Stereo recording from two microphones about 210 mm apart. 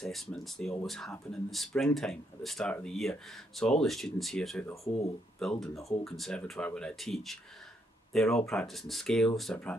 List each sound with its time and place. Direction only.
0.0 s speech: centre (ahead or behind)